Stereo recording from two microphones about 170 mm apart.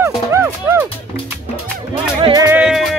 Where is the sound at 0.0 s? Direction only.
15° right (ahead or behind).